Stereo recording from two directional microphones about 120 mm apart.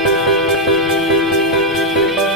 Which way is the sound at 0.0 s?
Centre (ahead or behind).